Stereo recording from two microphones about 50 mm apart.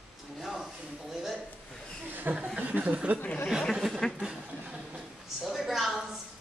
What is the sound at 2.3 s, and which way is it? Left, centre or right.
Speech, right.